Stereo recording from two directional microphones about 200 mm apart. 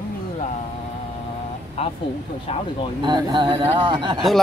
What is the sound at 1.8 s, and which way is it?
Speech, 30° left (ahead or behind).